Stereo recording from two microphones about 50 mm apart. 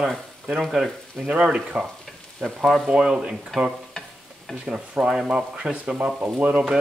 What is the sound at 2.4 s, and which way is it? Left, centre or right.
Speech, centre.